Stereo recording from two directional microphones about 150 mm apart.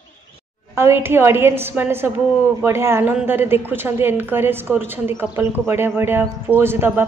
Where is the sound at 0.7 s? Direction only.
15° right (ahead or behind).